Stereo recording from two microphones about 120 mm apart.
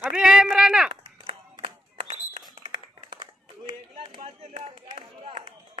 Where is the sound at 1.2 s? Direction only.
50° right (ahead or behind).